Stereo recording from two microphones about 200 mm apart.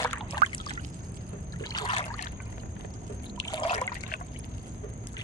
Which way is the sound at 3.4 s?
25° left (ahead or behind).